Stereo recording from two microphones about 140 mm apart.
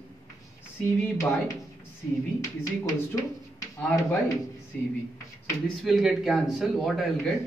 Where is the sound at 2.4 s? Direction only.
25° left (ahead or behind).